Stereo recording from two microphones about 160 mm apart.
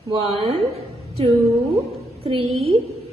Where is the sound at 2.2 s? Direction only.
35° right (ahead or behind).